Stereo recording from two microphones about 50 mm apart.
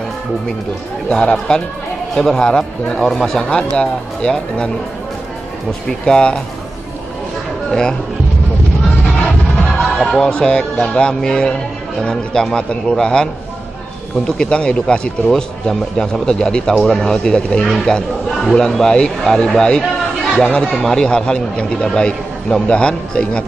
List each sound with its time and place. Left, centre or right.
1.0 s a man's voice: centre
3.4 s speech: centre
5.7 s a man's voice: centre
9.9 s music: centre
10.3 s a man's voice: centre
15.2 s a man's voice: centre